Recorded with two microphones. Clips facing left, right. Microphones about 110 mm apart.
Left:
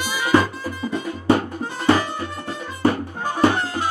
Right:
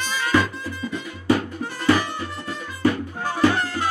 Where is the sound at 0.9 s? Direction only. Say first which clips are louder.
Left 3 dB; 30° left (ahead or behind).